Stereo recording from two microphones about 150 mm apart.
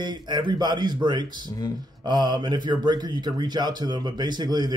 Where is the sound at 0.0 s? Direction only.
30° right (ahead or behind).